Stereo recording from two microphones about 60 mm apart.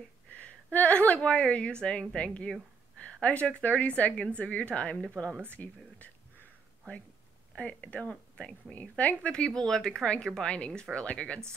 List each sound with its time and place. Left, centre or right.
0.3 s a woman's voice: left; by 5.4 s centre
5.5 s speech: left
7.5 s speech: centre
8.7 s speech: left